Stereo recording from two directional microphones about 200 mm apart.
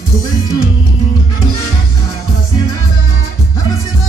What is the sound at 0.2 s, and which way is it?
Music, 20° left (ahead or behind).